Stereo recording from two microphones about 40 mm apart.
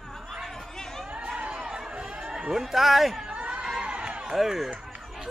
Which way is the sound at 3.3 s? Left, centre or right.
Right.